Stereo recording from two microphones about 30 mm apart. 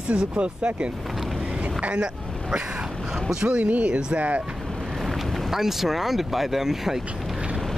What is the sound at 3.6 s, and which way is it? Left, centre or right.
Speech, right.